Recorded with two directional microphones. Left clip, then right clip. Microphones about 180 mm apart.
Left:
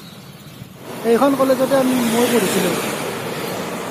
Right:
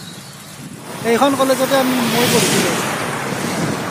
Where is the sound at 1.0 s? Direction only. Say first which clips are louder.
Right 1 dB; 10° right (ahead or behind).